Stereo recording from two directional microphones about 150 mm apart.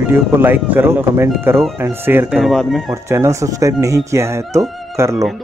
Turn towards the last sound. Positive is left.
turn(degrees=-20)  # may be behind; listen again after turning